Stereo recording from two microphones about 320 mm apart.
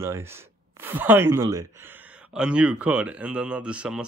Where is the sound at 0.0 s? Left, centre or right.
Centre.